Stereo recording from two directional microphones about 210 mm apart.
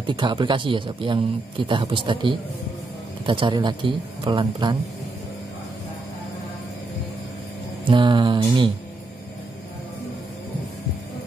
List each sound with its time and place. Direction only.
0.0 s a man's voice: 25° right (ahead or behind)
7.8 s a man's voice: 20° right (ahead or behind)